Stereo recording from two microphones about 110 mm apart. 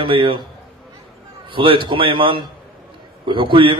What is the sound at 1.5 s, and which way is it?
A man's voice, 50° right (ahead or behind).